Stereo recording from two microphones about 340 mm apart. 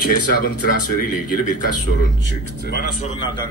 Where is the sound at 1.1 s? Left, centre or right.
Left.